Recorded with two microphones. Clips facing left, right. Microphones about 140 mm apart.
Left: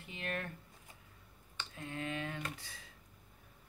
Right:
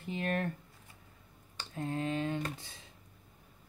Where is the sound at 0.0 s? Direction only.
40° right (ahead or behind).